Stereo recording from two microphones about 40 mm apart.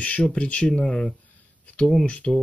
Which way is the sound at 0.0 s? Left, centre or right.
Left.